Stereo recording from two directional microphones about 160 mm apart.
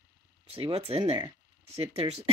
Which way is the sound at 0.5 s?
35° right (ahead or behind).